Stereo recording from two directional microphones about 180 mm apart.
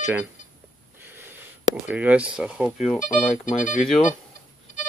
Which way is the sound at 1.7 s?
10° right (ahead or behind).